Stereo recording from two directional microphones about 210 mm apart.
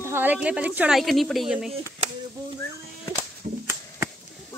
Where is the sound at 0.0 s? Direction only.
10° right (ahead or behind).